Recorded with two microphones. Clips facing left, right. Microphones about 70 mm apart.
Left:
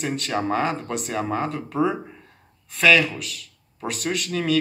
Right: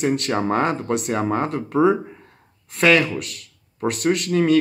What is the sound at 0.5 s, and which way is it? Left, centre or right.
Speech, right.